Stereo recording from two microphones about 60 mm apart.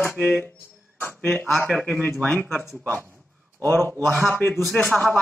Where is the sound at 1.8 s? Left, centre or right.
Left.